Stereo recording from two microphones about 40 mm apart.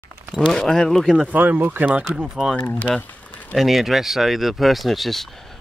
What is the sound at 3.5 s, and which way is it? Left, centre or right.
Speech, centre.